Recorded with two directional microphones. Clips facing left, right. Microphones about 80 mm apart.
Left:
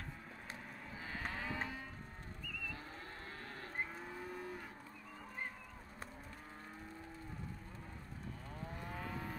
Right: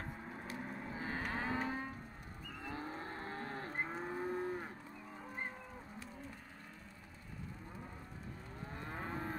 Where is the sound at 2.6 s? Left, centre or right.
Right.